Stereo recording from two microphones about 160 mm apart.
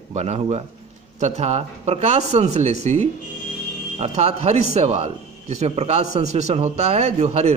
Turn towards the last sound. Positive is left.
turn(degrees=-40)  # may be behind; listen again after turning